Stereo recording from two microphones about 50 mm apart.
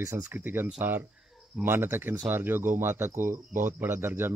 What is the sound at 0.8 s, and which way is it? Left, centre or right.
Speech, right.